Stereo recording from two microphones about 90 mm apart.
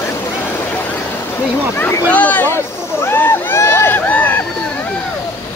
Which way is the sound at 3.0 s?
25° left (ahead or behind).